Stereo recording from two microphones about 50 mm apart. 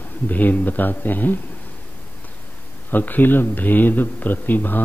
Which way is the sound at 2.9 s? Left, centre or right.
Left.